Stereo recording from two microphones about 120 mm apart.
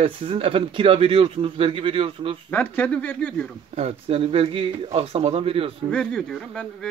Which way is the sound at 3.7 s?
55° right (ahead or behind).